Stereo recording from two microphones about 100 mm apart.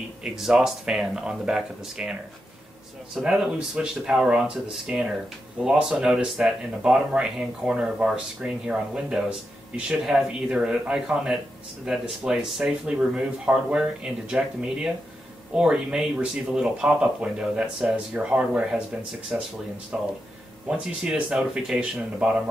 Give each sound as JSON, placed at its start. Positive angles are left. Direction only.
{"t": 0.2, "sound": "speech", "side_deg": -5}
{"t": 3.2, "sound": "speech", "side_deg": -10}